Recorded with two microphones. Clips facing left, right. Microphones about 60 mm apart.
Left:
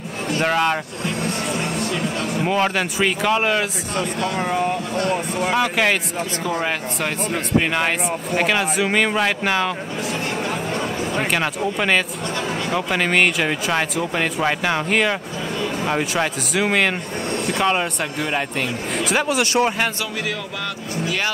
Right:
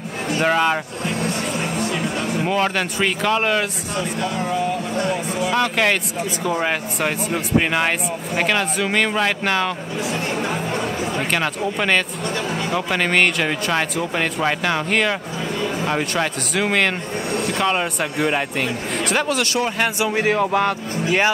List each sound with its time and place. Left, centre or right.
0.4 s speech: centre
1.6 s music: centre
2.4 s speech: centre
5.5 s speech: centre
11.1 s speech: centre
18.1 s speech: centre
19.4 s a man's voice: left
20.1 s speech: right